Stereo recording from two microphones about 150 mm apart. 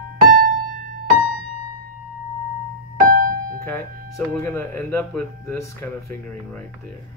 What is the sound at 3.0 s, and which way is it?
Music, 70° right (ahead or behind).